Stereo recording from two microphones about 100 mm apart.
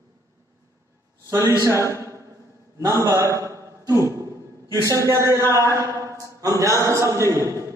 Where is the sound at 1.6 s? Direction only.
30° right (ahead or behind).